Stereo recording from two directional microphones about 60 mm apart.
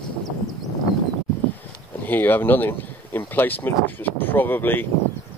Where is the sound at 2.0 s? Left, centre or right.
Left.